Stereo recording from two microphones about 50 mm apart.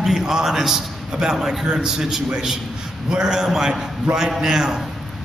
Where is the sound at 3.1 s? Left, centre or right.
Centre.